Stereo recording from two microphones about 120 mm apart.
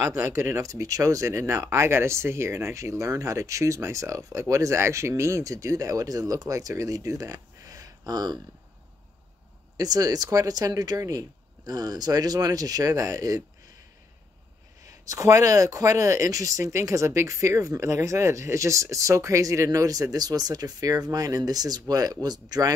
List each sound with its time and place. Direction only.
0.0 s speech: 25° right (ahead or behind)
9.8 s speech: 30° right (ahead or behind)
14.9 s speech: 25° right (ahead or behind)